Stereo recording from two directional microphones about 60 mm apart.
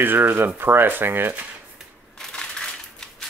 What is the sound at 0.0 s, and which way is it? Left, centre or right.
Speech, right.